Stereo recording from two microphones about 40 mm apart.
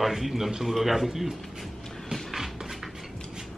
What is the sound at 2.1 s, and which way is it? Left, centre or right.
Music, centre.